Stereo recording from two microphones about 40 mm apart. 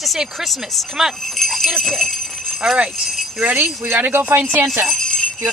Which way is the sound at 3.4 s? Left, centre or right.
Right.